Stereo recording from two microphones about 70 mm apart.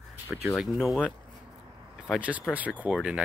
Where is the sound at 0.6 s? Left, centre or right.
Centre.